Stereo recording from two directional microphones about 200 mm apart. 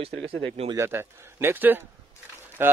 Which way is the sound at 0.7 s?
10° right (ahead or behind).